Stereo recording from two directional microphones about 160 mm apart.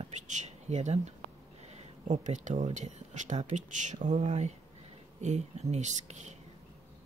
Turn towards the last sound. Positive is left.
turn(degrees=-45)  # may be behind; listen again after turning